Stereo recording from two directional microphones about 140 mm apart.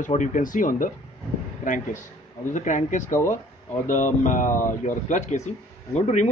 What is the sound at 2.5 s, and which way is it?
A man's voice, 60° left (ahead or behind).